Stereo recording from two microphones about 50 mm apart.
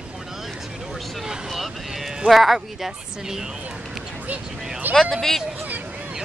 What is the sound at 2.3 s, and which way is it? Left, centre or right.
Speech, centre.